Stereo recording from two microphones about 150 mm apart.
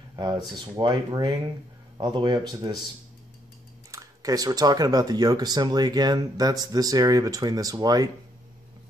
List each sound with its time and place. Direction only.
0.1 s a sound: 30° right (ahead or behind)
0.7 s speech: 30° right (ahead or behind)
3.9 s speech: 20° right (ahead or behind)